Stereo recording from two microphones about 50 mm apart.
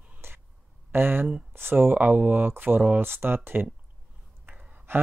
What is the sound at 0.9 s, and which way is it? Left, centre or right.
Speech, right.